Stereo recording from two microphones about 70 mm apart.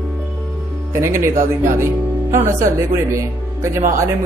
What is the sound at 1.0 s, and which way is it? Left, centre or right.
Speech, right.